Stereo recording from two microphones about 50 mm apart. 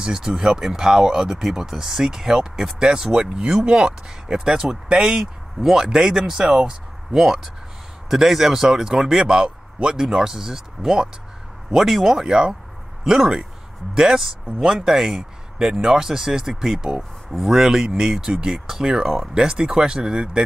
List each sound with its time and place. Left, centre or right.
0.0 s speech: centre